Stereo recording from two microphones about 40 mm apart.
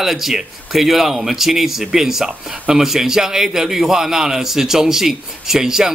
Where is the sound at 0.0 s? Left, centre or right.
Centre.